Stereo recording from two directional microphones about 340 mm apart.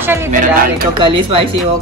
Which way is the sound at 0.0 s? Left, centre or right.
Centre.